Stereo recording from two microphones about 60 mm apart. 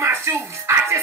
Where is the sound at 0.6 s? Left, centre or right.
Right.